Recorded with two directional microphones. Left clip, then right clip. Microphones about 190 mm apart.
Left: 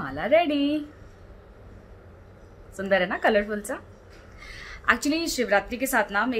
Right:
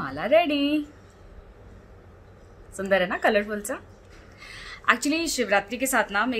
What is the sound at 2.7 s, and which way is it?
A woman's voice, 10° right (ahead or behind).